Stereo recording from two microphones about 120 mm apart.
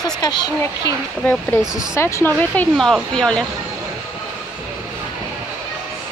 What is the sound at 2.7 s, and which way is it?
Speech, centre (ahead or behind).